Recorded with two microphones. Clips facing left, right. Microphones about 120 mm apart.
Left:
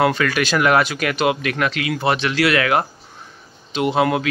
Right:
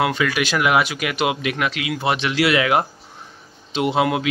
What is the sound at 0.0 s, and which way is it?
Speech, 10° right (ahead or behind).